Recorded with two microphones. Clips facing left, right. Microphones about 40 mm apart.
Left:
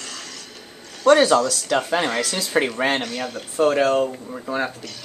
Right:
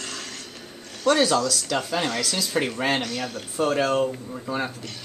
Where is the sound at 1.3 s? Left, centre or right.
Centre.